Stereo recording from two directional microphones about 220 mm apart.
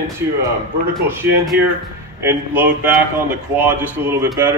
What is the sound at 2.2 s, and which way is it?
A man's voice, 10° right (ahead or behind).